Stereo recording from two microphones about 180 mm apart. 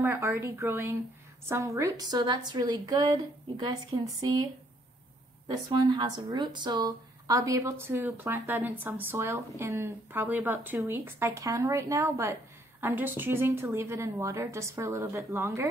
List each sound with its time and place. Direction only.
0.0 s a woman's voice: 15° right (ahead or behind)
5.5 s a woman's voice: 20° right (ahead or behind)